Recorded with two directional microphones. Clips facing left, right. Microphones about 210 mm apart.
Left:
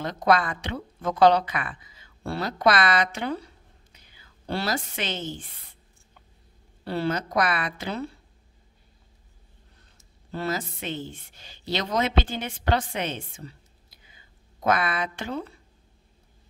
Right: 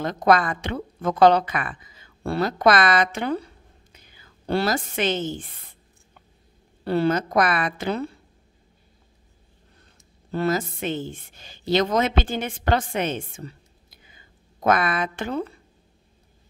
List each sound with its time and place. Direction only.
0.0 s a woman's voice: 50° right (ahead or behind)
4.5 s a woman's voice: 50° right (ahead or behind)
6.8 s a woman's voice: 50° right (ahead or behind)
10.3 s a woman's voice: 50° right (ahead or behind)
14.6 s a woman's voice: 50° right (ahead or behind)